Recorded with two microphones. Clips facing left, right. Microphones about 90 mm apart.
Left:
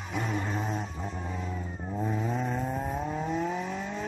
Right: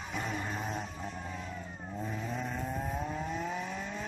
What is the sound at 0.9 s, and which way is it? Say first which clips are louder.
Vehicle: left 4 dB; 20° left (ahead or behind).